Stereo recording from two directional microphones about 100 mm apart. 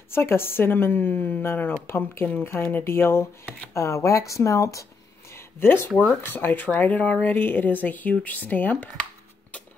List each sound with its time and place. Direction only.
0.1 s speech: 25° left (ahead or behind)
5.3 s a sound: 25° left (ahead or behind)
6.2 s speech: 20° left (ahead or behind)